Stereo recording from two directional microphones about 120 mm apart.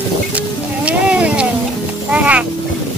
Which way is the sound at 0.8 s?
10° right (ahead or behind).